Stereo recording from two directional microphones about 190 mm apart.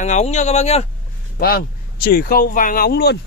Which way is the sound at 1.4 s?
50° left (ahead or behind).